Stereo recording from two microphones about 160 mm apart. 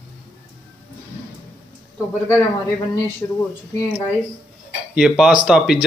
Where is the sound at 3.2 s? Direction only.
20° left (ahead or behind).